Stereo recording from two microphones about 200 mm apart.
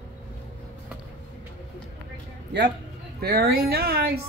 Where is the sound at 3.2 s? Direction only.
50° right (ahead or behind).